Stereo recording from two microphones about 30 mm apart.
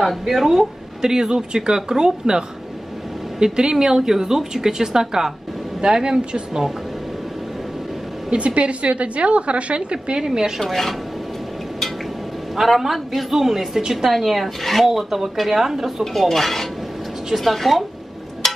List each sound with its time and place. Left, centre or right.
0.3 s speech: centre
8.4 s a woman's voice: right
10.1 s speech: right
10.6 s speech: centre
12.5 s a woman's voice: centre
14.1 s a woman's voice: centre
16.1 s speech: centre
18.4 s a sound: centre